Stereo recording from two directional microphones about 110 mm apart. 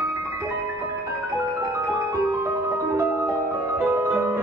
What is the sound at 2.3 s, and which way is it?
Music, 25° right (ahead or behind).